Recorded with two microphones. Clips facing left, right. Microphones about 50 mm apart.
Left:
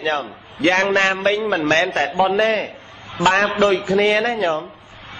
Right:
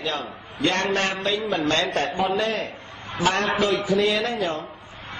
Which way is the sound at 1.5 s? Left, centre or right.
Left.